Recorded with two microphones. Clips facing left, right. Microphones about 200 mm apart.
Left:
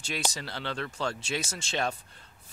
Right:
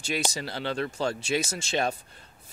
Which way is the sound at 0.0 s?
5° right (ahead or behind).